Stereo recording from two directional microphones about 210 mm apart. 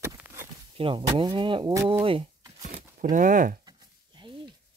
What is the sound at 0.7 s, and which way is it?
Speech, 25° right (ahead or behind).